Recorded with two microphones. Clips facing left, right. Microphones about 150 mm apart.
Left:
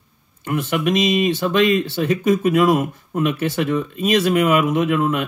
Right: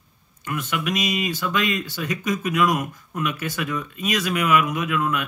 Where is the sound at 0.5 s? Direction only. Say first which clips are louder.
Left 7 dB; 30° left (ahead or behind).